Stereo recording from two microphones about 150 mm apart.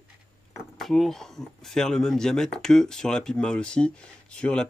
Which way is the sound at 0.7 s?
Centre (ahead or behind).